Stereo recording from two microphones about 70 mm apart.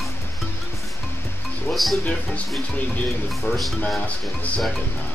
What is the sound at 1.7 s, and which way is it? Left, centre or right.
Music, centre.